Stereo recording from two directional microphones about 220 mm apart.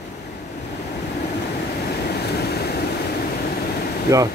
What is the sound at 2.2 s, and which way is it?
Vehicle, 45° left (ahead or behind).